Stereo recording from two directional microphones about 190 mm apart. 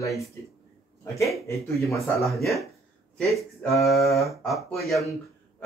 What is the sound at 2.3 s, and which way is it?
Speech, centre (ahead or behind).